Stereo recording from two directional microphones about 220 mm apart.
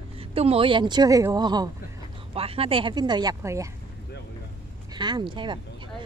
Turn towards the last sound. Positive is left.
turn(degrees=-20)  # may be behind; listen again after turning